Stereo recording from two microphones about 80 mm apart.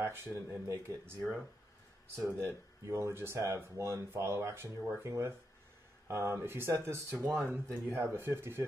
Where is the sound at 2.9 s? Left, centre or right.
Right.